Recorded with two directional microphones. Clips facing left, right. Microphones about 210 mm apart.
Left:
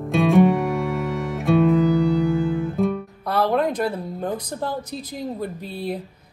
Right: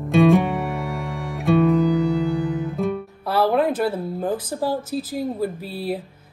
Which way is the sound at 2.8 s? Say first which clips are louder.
Left 2 dB; centre (ahead or behind).